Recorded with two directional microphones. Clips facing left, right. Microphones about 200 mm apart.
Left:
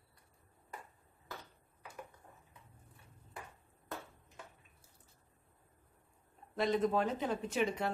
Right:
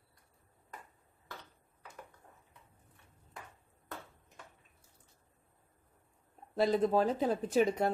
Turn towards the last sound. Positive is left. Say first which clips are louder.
# right 6 dB
turn(degrees=-40)  # may be behind; listen again after turning